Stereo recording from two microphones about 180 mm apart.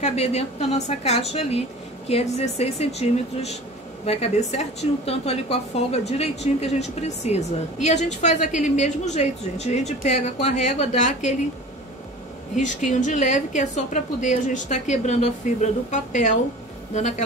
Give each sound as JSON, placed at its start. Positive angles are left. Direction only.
{"t": 0.0, "sound": "speech", "side_deg": 35}
{"t": 12.5, "sound": "a woman's voice", "side_deg": 45}